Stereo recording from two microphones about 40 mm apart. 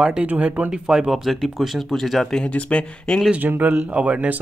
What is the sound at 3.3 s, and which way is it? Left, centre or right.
Speech, right.